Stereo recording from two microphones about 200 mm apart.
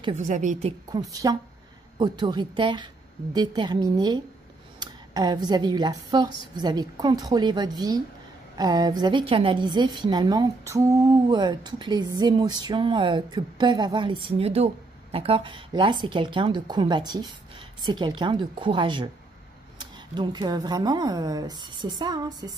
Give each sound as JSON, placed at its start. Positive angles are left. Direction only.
{"t": 0.0, "sound": "a woman's voice", "side_deg": -35}
{"t": 0.8, "sound": "a woman's voice", "side_deg": -20}